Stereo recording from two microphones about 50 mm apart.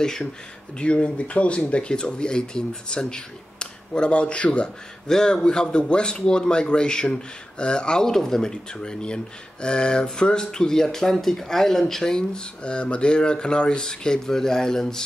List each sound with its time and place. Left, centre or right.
0.0 s speech: centre
0.7 s speech: left